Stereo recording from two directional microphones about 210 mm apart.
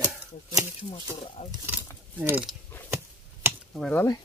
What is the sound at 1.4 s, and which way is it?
Speech, 10° right (ahead or behind).